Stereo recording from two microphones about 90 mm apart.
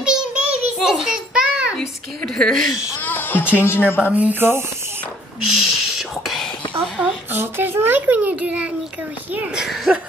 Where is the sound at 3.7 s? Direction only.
25° left (ahead or behind).